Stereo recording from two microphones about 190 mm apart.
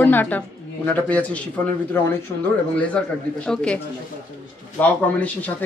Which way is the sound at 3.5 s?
5° left (ahead or behind).